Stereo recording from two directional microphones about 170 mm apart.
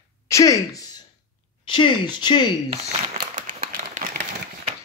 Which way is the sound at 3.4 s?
50° right (ahead or behind).